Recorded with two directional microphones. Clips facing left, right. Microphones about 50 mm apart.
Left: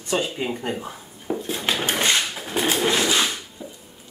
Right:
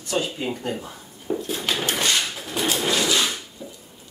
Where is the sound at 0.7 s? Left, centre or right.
Centre.